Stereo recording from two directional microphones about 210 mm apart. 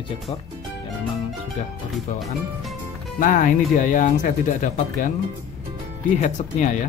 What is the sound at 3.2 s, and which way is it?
Speech, 40° left (ahead or behind).